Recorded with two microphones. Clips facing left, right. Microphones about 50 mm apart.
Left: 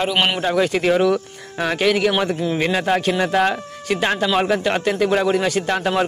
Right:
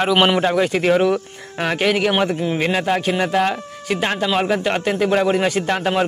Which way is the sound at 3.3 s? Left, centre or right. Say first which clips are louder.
Even; centre.